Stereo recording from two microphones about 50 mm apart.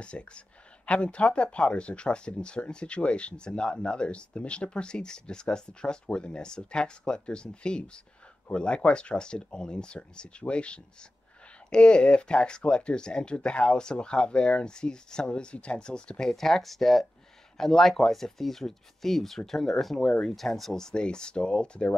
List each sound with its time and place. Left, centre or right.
0.0 s speech: left; by 20.0 s centre
20.0 s speech: centre
20.2 s speech: centre; by 21.9 s left